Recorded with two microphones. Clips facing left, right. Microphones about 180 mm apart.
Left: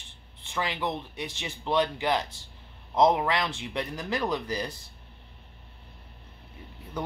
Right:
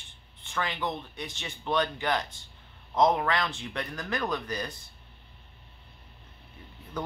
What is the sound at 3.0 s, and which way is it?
Speech, 20° left (ahead or behind).